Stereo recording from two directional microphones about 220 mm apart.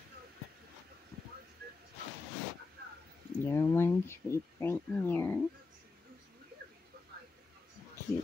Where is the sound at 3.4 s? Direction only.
10° left (ahead or behind).